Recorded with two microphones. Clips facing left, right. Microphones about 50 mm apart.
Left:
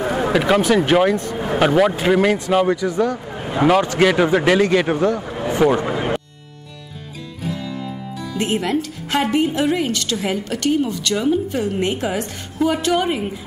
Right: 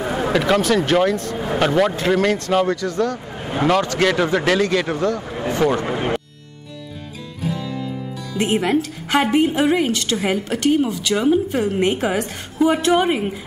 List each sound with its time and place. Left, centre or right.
0.0 s speech: centre
5.2 s vehicle: centre
5.9 s music: centre
8.4 s a woman's voice: centre